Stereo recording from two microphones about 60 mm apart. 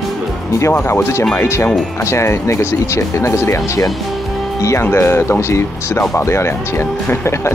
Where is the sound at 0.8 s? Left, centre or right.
Left.